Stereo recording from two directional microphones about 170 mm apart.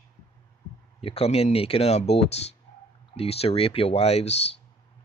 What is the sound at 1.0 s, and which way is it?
Speech, 35° left (ahead or behind).